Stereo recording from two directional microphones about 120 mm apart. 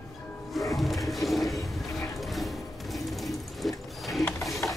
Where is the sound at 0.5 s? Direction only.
Centre (ahead or behind).